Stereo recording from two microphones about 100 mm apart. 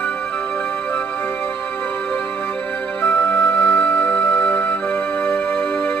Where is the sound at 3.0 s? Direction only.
25° left (ahead or behind).